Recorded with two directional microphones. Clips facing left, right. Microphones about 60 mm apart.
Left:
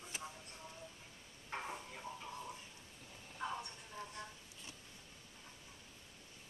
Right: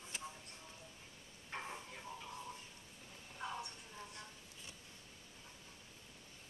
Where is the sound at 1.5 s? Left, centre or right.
Centre.